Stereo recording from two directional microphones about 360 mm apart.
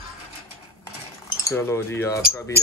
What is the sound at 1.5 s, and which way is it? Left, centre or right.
Speech, centre.